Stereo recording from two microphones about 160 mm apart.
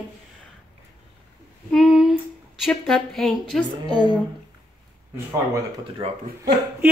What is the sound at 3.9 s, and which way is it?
Speech, 30° right (ahead or behind).